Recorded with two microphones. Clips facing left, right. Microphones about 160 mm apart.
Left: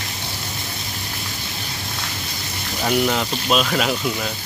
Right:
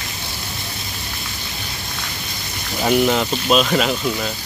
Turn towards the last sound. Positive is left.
turn(degrees=0)  # may be behind; listen again after turning